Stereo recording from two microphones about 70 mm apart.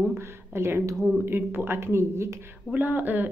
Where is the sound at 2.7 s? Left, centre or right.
Right.